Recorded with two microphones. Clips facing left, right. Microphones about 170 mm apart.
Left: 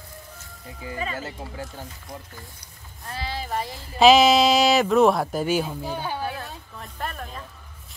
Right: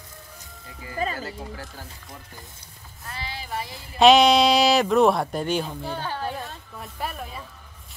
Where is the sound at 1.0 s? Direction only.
35° right (ahead or behind).